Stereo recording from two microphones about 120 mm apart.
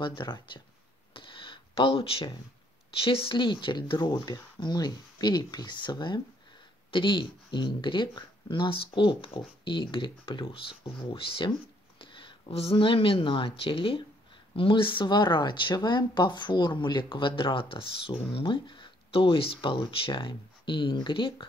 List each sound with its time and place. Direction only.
0.0 s speech: 40° left (ahead or behind)
1.1 s a sound: 45° left (ahead or behind)
2.9 s speech: 50° left (ahead or behind)